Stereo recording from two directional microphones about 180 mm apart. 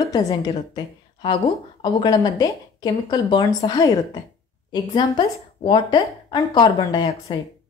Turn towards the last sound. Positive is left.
turn(degrees=20)  # may be behind; listen again after turning